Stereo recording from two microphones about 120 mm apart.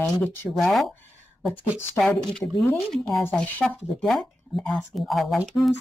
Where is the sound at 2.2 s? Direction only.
5° left (ahead or behind).